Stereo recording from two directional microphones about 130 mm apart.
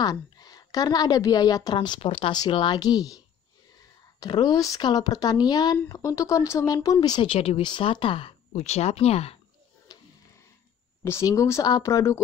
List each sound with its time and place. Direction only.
0.0 s a woman's voice: 30° left (ahead or behind)
4.2 s a woman's voice: 30° left (ahead or behind); by 9.4 s 50° left (ahead or behind)
9.9 s a sound: 30° left (ahead or behind)
11.1 s speech: 25° left (ahead or behind)